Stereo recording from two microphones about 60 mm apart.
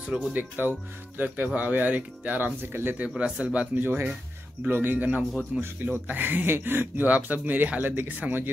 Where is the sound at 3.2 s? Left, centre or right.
Centre.